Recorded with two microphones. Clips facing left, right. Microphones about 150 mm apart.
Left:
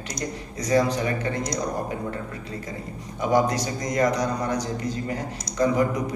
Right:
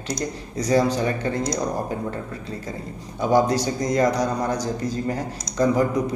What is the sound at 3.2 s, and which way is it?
A man's voice, 30° right (ahead or behind).